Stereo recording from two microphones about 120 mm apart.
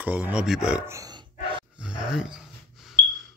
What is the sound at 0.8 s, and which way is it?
Roar, 25° right (ahead or behind).